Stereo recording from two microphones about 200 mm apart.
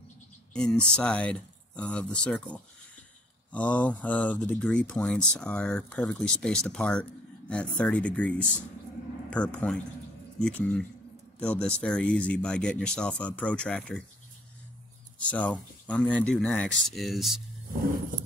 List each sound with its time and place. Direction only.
0.5 s speech: 5° left (ahead or behind)
15.1 s speech: 5° left (ahead or behind)